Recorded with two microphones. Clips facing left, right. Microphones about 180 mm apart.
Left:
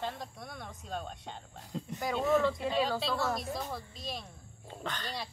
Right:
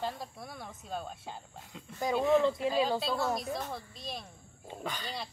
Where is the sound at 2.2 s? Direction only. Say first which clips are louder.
Right 2 dB; 20° right (ahead or behind).